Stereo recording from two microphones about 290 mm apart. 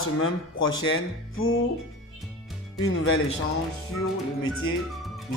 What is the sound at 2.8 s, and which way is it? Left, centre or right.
Speech, left.